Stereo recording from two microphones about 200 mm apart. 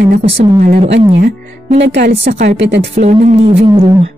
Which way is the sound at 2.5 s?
60° right (ahead or behind).